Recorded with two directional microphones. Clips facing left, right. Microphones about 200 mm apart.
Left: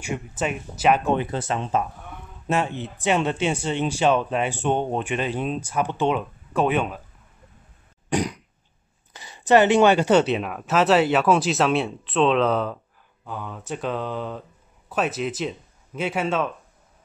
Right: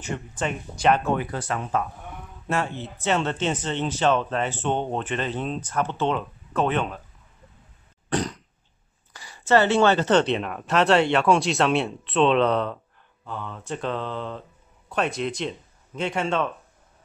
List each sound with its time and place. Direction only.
0.0 s speech: 10° left (ahead or behind)
1.0 s speech: 25° left (ahead or behind)
8.1 s throat clearing: 10° left (ahead or behind)
9.1 s speech: 20° left (ahead or behind); by 16.5 s 5° left (ahead or behind)